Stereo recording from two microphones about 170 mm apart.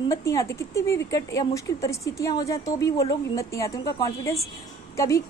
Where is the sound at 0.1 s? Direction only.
20° left (ahead or behind).